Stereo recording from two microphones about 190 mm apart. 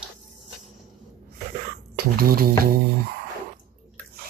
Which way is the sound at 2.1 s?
50° right (ahead or behind).